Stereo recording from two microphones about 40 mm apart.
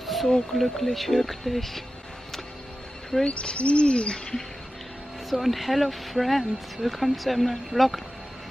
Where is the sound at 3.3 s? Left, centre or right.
Left.